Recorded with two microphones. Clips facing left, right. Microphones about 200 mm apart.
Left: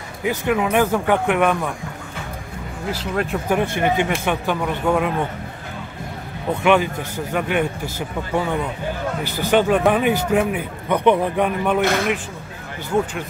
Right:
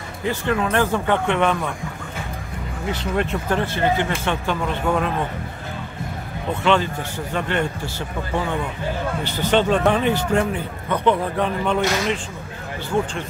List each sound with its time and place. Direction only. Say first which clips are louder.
0.2 s a man's voice: left 2 dB; 10° left (ahead or behind)
2.9 s a man's voice: even; 5° left (ahead or behind)
6.6 s a man's voice: left 2 dB; 15° left (ahead or behind)
9.4 s a man's voice: left 2 dB; 10° left (ahead or behind)
11.8 s a man's voice: left 2 dB; 55° left (ahead or behind)